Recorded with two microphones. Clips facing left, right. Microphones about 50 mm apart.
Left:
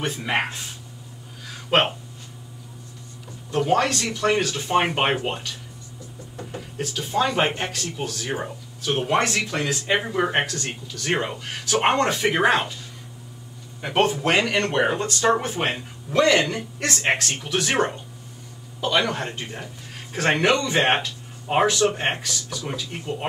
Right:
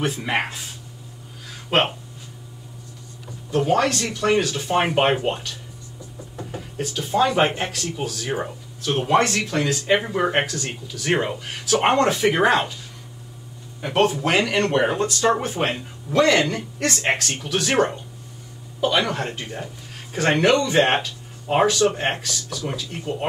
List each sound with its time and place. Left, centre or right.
0.0 s speech: centre
1.7 s speech: centre
3.5 s speech: centre
13.7 s a man's voice: centre
18.8 s speech: centre
19.6 s a sound: centre
20.4 s a man's voice: centre